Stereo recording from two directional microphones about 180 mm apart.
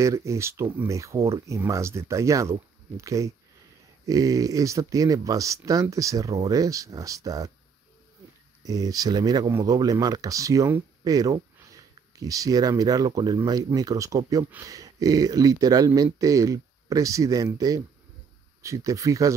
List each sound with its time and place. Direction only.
0.0 s speech: 15° right (ahead or behind)
8.6 s speech: 20° right (ahead or behind)